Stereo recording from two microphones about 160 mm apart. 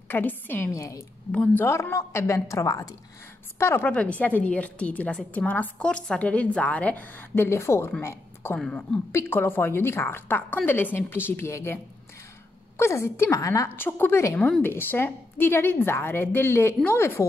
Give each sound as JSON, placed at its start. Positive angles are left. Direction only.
{"t": 0.1, "sound": "a woman's voice", "side_deg": 10}
{"t": 1.3, "sound": "a woman's voice", "side_deg": 10}
{"t": 8.5, "sound": "a woman's voice", "side_deg": 5}